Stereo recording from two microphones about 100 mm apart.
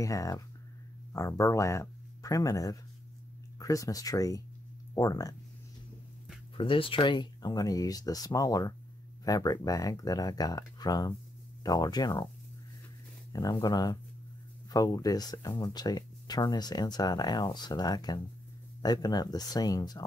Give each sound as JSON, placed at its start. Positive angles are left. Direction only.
{"t": 0.0, "sound": "speech", "side_deg": 35}
{"t": 6.5, "sound": "speech", "side_deg": 60}
{"t": 13.3, "sound": "speech", "side_deg": 40}